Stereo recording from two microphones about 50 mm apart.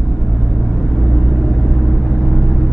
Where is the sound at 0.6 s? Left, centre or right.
Centre.